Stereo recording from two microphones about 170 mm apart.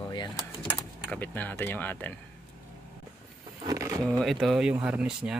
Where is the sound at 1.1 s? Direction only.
10° left (ahead or behind).